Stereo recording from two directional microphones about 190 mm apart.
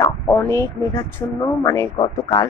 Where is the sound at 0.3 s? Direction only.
15° left (ahead or behind).